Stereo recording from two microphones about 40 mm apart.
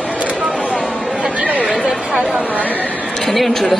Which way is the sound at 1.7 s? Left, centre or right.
Right.